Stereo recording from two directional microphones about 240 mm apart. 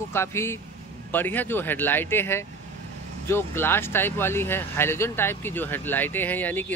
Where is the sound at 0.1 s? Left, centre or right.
Centre.